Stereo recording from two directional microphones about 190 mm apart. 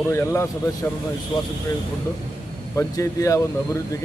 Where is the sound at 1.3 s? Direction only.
20° left (ahead or behind).